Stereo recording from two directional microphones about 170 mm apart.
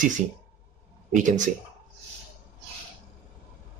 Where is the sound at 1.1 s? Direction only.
45° right (ahead or behind).